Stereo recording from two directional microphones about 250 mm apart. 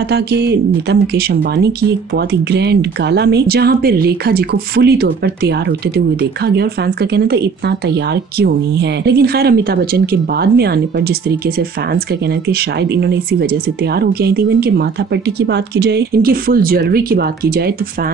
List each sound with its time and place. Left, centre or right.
0.1 s speech: right